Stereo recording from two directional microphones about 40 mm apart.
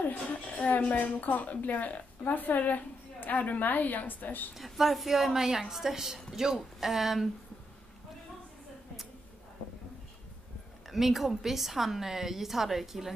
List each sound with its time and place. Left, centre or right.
0.5 s a woman's voice: left
4.6 s a woman's voice: centre
10.9 s a woman's voice: centre